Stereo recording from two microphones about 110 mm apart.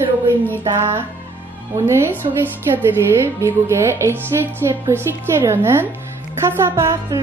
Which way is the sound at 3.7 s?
25° right (ahead or behind).